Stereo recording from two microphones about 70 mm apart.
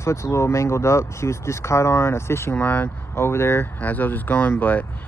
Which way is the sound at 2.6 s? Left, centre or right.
Left.